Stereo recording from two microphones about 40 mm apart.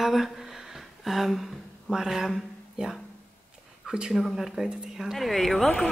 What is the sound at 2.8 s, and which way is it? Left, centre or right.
Speech, right.